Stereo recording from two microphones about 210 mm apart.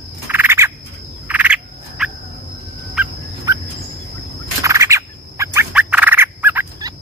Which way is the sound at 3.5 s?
15° right (ahead or behind).